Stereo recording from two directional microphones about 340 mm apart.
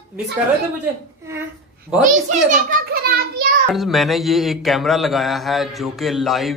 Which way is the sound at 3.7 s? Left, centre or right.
Centre.